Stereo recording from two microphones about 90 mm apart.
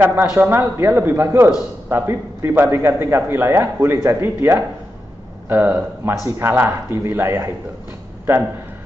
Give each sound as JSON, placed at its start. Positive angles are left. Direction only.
{"t": 0.0, "sound": "a man's voice", "side_deg": -25}